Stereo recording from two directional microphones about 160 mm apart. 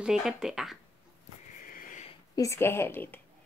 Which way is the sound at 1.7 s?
55° left (ahead or behind).